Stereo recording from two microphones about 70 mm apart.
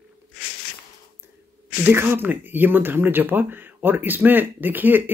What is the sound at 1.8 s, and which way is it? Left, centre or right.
Mantra, right.